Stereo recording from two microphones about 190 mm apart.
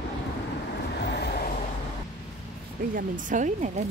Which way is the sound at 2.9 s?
45° right (ahead or behind).